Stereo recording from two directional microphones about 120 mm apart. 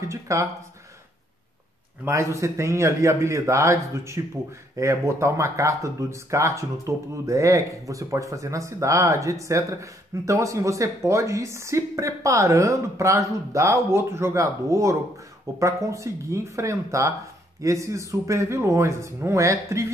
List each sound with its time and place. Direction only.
0.1 s speech: 25° right (ahead or behind)
2.0 s speech: 25° right (ahead or behind)